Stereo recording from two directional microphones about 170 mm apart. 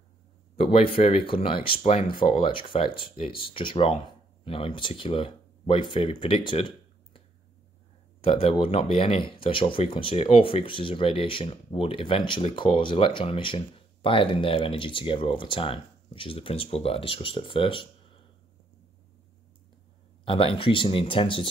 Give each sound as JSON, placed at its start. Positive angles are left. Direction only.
{"t": 0.6, "sound": "speech", "side_deg": 35}
{"t": 8.2, "sound": "speech", "side_deg": 35}
{"t": 20.2, "sound": "speech", "side_deg": 30}